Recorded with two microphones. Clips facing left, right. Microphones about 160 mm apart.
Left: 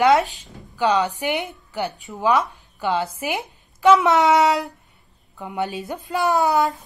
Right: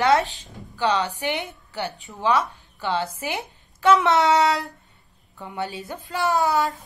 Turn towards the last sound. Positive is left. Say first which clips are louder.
# left 3 dB
turn(degrees=20)  # may be behind; listen again after turning